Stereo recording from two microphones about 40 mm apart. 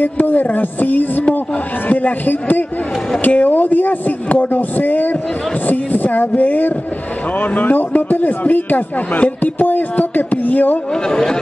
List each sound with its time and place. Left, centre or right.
0.0 s speech: left
11.1 s speech: centre